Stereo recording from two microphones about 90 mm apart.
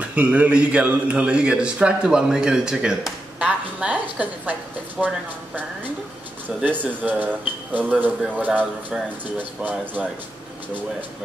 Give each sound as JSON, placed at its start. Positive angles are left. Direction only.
{"t": 0.0, "sound": "a man's voice", "side_deg": -15}
{"t": 5.0, "sound": "speech", "side_deg": -5}
{"t": 6.6, "sound": "speech", "side_deg": -20}